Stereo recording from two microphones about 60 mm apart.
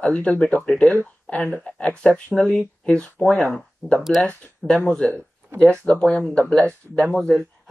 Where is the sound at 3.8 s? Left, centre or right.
Left.